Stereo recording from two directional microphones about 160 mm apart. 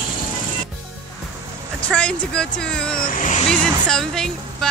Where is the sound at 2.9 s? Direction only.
55° left (ahead or behind).